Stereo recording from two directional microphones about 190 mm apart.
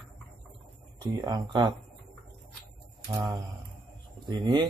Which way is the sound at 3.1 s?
15° right (ahead or behind).